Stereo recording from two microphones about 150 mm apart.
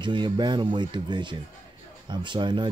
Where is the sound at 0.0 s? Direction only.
30° right (ahead or behind).